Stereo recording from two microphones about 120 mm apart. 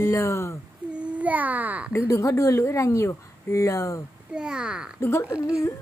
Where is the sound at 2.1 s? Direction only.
25° left (ahead or behind).